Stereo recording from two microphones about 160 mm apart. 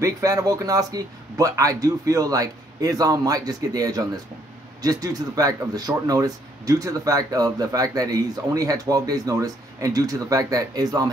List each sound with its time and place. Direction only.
0.0 s speech: 20° right (ahead or behind)